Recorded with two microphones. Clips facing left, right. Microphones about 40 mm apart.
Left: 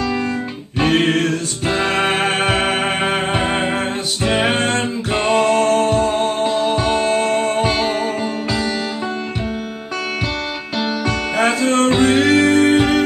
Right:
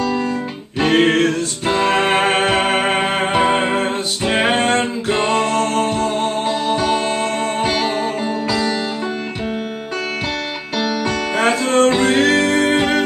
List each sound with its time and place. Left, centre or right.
0.9 s music: centre
6.4 s music: centre
11.3 s music: centre